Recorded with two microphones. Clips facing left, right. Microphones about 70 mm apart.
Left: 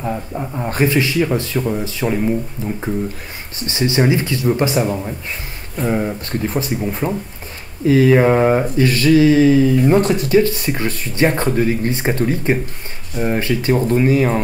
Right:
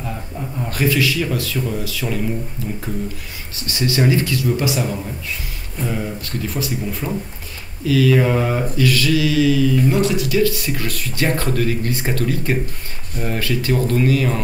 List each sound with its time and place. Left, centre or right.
0.0 s speech: left
3.5 s speech: left